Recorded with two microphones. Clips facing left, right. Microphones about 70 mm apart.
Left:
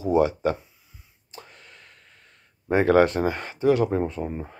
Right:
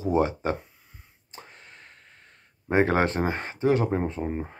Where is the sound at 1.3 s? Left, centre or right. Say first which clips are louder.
Left 1 dB; right.